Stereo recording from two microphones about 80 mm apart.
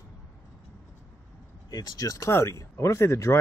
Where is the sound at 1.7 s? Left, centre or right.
Left.